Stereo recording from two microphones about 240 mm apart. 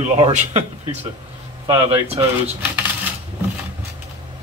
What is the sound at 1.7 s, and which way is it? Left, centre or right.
Speech, right.